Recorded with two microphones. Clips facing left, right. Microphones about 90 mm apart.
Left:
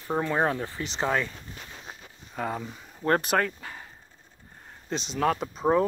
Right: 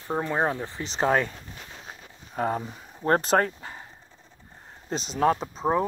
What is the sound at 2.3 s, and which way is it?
Speech, 30° right (ahead or behind).